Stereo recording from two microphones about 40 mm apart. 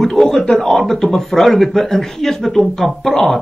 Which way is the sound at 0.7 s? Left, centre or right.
Centre.